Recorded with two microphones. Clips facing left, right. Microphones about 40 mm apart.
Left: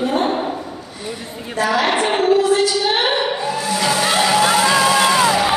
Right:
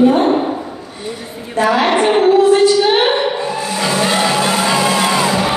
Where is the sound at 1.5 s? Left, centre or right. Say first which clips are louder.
Right 4 dB; right.